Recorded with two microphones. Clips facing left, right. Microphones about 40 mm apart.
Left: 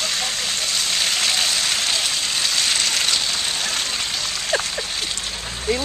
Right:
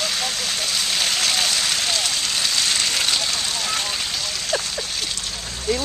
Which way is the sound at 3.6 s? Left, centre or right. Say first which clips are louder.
Even; centre.